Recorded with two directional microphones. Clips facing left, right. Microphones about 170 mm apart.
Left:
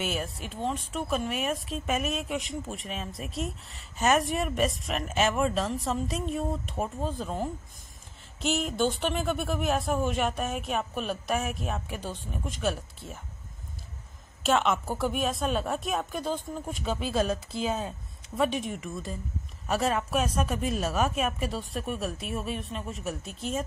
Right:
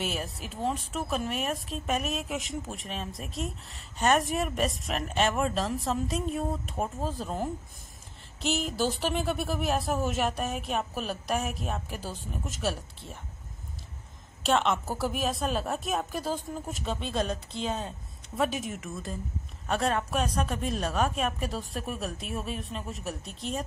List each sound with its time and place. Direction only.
0.0 s speech: centre (ahead or behind)
14.4 s speech: centre (ahead or behind)